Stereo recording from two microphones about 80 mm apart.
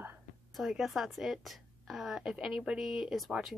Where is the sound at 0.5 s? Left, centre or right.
Centre.